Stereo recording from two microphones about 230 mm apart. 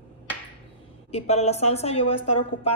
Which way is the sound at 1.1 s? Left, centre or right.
Left.